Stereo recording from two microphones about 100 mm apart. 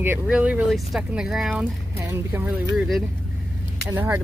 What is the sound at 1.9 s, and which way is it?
Speech, 25° right (ahead or behind).